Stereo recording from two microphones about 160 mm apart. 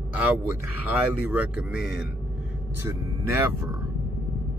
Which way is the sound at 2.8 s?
15° right (ahead or behind).